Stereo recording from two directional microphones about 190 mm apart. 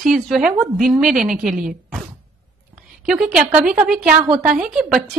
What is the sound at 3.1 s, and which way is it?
Speech, centre (ahead or behind).